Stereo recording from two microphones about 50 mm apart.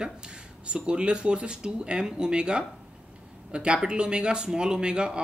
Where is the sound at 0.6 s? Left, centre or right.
Right.